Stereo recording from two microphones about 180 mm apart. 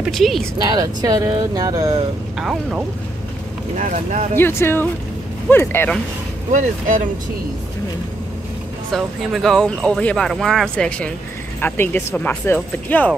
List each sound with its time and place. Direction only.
0.0 s speech: centre (ahead or behind)
0.7 s speech: 20° right (ahead or behind)
3.7 s speech: 45° right (ahead or behind)
4.4 s speech: 10° left (ahead or behind)
6.5 s speech: 45° right (ahead or behind)
8.9 s speech: centre (ahead or behind)